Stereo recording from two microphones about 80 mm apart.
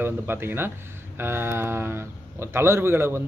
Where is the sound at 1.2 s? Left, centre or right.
Right.